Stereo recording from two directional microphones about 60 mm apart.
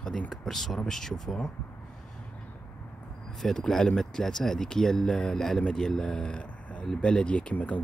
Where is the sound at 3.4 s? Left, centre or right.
Centre.